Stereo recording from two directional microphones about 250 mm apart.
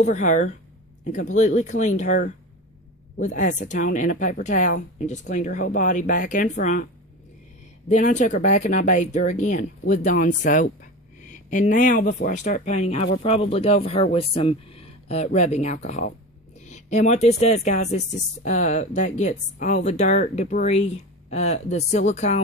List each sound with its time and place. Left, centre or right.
0.0 s speech: left
7.9 s speech: left